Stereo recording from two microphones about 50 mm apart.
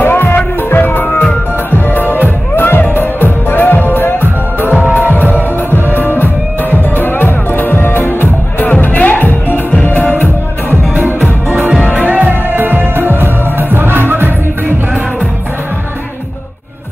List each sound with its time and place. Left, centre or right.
0.0 s music: left
11.9 s music: right